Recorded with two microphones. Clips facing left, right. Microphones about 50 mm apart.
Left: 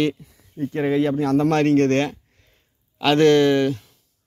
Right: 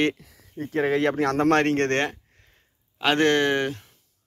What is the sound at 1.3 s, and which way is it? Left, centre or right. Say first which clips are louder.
Speech: left 6 dB; right.